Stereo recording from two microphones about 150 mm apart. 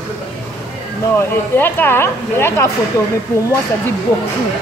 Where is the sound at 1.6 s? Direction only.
15° left (ahead or behind).